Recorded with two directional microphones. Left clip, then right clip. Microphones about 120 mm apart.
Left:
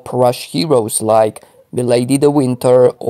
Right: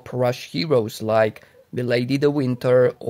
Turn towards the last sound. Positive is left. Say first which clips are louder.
# left 7 dB
turn(degrees=40)  # may be behind; listen again after turning